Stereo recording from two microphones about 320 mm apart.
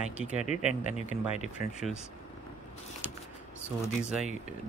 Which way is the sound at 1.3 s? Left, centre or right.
Left.